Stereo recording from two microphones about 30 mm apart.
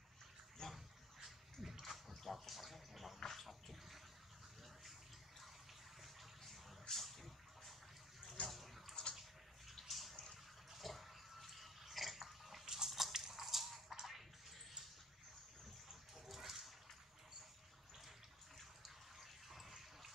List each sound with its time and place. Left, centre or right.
0.6 s a sound: left
1.2 s bathtub: centre
2.2 s a sound: centre
6.5 s a sound: centre
8.5 s bathtub: centre
12.6 s bathtub: centre
12.9 s crushing: centre
15.9 s bathtub: centre
18.8 s bathtub: centre